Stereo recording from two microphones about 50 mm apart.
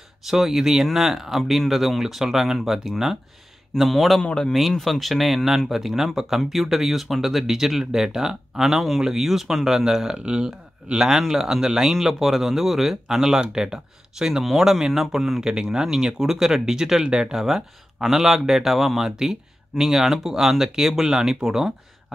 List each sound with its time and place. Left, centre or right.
0.2 s speech: centre
4.2 s speech: centre
4.6 s speech: centre
15.4 s speech: centre